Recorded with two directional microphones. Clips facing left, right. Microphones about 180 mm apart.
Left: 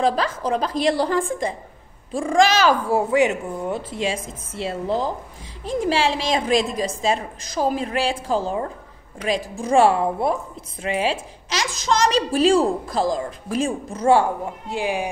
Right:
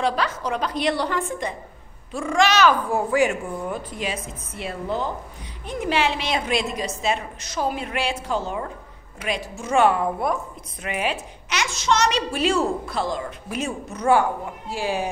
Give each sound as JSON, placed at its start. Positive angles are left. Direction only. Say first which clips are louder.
{"t": 0.0, "sound": "a woman's voice", "louder": "left 3 dB", "side_deg": 35}
{"t": 14.7, "sound": "speech", "louder": "left 1 dB", "side_deg": 15}